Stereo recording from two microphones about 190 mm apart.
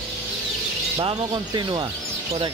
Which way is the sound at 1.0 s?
25° right (ahead or behind).